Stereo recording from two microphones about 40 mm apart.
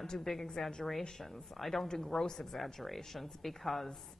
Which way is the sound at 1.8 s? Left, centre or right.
Centre.